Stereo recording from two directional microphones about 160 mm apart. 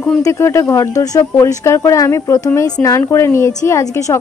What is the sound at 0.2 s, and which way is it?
Speech, 15° left (ahead or behind).